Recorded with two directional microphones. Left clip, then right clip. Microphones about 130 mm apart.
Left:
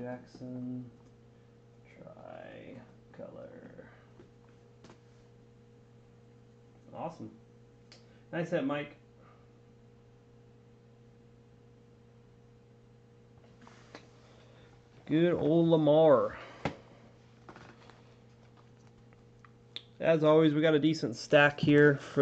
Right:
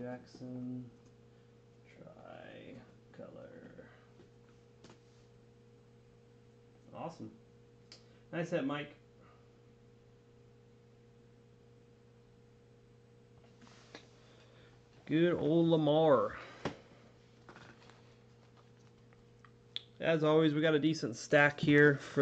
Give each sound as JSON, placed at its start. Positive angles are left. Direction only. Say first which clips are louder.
{"t": 2.2, "sound": "a sound", "louder": "left 4 dB", "side_deg": -40}
{"t": 8.4, "sound": "speech", "louder": "left 4 dB", "side_deg": -25}
{"t": 15.0, "sound": "speech", "louder": "left 3 dB", "side_deg": -5}
{"t": 15.9, "sound": "speech", "louder": "left 6 dB", "side_deg": -25}
{"t": 17.6, "sound": "a sound", "louder": "left 3 dB", "side_deg": 0}
{"t": 19.7, "sound": "speech", "louder": "left 5 dB", "side_deg": -10}
{"t": 21.6, "sound": "speech", "louder": "left 3 dB", "side_deg": -20}